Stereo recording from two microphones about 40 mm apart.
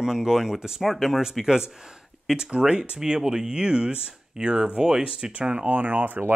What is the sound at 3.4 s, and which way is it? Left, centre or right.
Speech, right.